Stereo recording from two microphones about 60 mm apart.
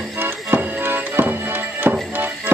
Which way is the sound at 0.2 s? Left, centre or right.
Right.